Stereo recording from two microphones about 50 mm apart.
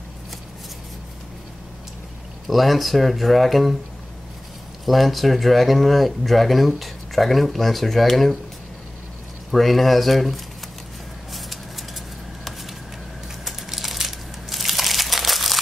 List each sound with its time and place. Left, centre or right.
2.4 s speech: centre
4.8 s speech: centre
9.5 s speech: centre
11.3 s a sound: centre
13.5 s crushing: centre